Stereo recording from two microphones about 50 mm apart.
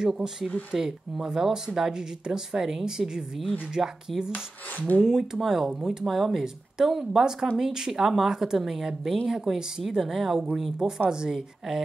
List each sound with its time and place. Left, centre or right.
0.0 s speech: centre
4.3 s speech: left
5.0 s speech: centre
6.0 s speech: centre